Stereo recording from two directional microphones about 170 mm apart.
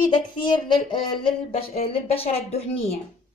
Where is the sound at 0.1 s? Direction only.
30° left (ahead or behind).